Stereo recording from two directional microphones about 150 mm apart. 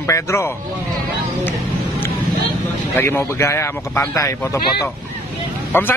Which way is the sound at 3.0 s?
15° left (ahead or behind).